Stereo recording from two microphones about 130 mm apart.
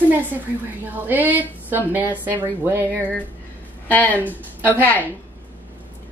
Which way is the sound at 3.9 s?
10° left (ahead or behind).